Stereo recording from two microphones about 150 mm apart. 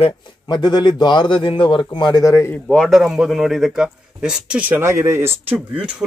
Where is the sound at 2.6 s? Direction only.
Centre (ahead or behind); by 5.3 s 15° right (ahead or behind).